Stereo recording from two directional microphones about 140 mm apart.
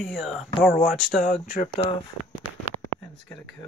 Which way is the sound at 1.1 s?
65° left (ahead or behind).